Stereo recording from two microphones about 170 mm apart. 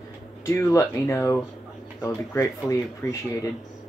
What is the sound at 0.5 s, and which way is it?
Speech, 15° left (ahead or behind).